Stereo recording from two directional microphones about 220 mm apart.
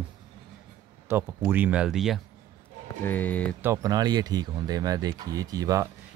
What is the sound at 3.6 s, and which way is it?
Speech, 15° right (ahead or behind).